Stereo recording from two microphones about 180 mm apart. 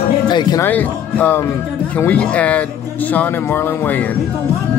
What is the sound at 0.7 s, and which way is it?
Speech, 10° left (ahead or behind).